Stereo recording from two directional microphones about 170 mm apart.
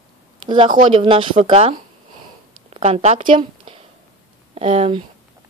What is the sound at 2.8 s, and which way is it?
A woman's voice, 40° right (ahead or behind).